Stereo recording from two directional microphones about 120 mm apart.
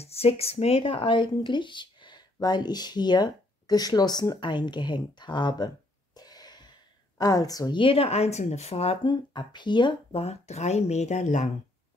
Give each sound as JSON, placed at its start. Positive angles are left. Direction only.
{"t": 0.0, "sound": "speech", "side_deg": 55}
{"t": 6.1, "sound": "a sound", "side_deg": 35}
{"t": 7.2, "sound": "speech", "side_deg": 30}
{"t": 7.8, "sound": "speech", "side_deg": 55}
{"t": 9.0, "sound": "speech", "side_deg": 40}
{"t": 10.2, "sound": "speech", "side_deg": 65}